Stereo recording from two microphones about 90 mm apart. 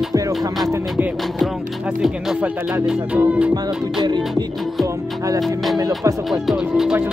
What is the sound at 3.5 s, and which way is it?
Music, 55° right (ahead or behind).